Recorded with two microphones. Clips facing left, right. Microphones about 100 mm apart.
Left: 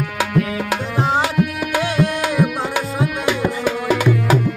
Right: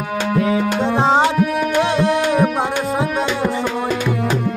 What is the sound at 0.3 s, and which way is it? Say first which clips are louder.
Tabla: right 6 dB; 25° right (ahead or behind).